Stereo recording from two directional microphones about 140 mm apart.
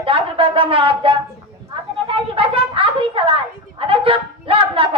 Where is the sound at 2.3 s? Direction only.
40° right (ahead or behind).